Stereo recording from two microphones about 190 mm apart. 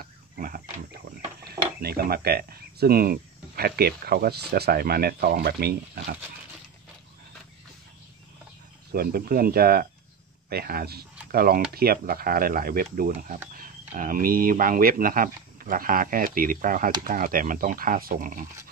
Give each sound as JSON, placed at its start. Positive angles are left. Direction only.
{"t": 0.0, "sound": "pig", "side_deg": -50}
{"t": 1.5, "sound": "speech", "side_deg": -55}
{"t": 8.9, "sound": "speech", "side_deg": -50}